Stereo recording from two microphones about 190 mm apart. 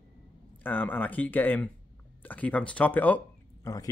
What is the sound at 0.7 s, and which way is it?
Speech, 10° left (ahead or behind).